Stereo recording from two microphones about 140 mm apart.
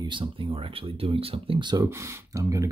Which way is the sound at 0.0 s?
35° right (ahead or behind).